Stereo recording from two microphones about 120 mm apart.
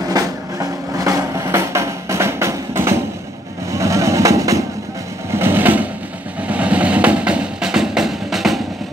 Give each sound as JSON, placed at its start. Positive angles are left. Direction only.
{"t": 0.1, "sound": "music", "side_deg": -30}
{"t": 3.7, "sound": "vehicle", "side_deg": -25}
{"t": 5.3, "sound": "sewing machine", "side_deg": -20}
{"t": 6.4, "sound": "music", "side_deg": -10}